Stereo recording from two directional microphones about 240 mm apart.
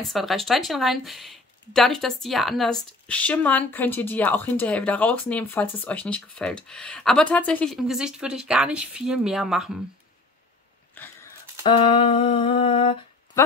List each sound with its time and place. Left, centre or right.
0.0 s speech: centre
11.0 s a sound: centre
11.6 s speech: left